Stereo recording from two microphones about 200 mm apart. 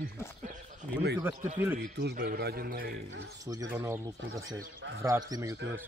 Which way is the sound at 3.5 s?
15° right (ahead or behind).